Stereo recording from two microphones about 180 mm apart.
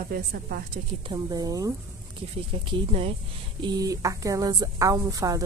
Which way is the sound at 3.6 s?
20° right (ahead or behind).